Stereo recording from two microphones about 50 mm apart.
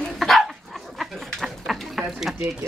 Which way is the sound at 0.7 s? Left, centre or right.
Centre.